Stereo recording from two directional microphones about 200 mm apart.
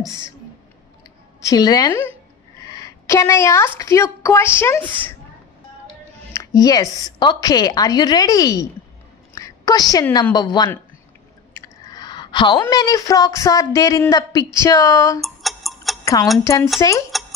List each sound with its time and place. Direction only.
0.0 s speech: 15° left (ahead or behind)
1.4 s a woman's voice: 20° left (ahead or behind)
6.3 s a woman's voice: 20° left (ahead or behind)
9.3 s a sound: 15° left (ahead or behind)
10.3 s a woman's voice: 20° left (ahead or behind)
15.2 s tick-tock: centre (ahead or behind)
16.5 s speech: 15° left (ahead or behind)
17.1 s a sound: centre (ahead or behind)